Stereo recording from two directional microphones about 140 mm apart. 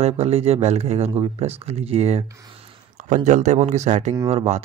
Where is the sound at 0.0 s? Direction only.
45° right (ahead or behind).